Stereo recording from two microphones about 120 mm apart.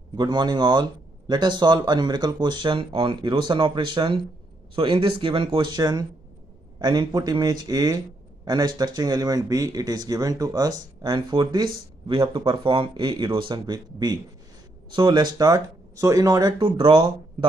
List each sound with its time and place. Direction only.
0.1 s speech: 40° right (ahead or behind)